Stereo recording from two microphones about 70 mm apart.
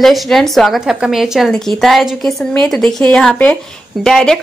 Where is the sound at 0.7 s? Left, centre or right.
Centre.